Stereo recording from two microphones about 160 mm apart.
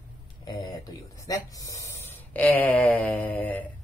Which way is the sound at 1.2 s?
20° left (ahead or behind).